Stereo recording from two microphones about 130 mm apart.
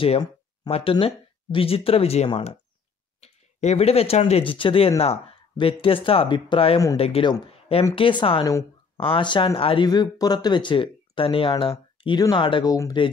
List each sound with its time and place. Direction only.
0.7 s speech: 50° left (ahead or behind)
9.8 s speech: 30° left (ahead or behind)